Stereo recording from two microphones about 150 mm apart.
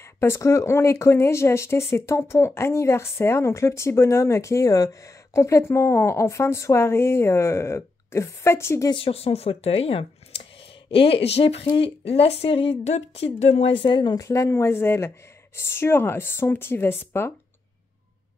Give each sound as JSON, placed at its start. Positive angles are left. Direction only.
{"t": 0.2, "sound": "speech", "side_deg": 20}
{"t": 8.9, "sound": "speech", "side_deg": 40}
{"t": 13.8, "sound": "speech", "side_deg": 30}